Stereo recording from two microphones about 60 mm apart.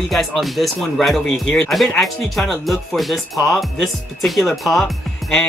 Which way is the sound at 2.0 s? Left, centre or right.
Centre.